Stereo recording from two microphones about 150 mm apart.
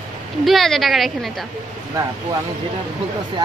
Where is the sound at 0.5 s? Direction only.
Centre (ahead or behind).